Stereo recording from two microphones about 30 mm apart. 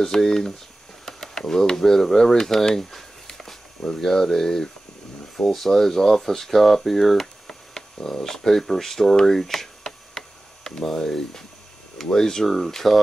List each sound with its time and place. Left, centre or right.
0.0 s speech: centre
3.8 s speech: left; by 7.2 s centre
7.4 s a sound: centre
8.2 s speech: centre
9.4 s tick-tock: centre
11.1 s speech: centre